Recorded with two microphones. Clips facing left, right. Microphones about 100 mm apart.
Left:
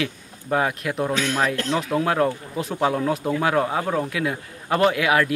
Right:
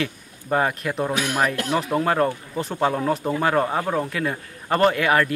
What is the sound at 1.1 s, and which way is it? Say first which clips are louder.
Speech: even; 15° right (ahead or behind).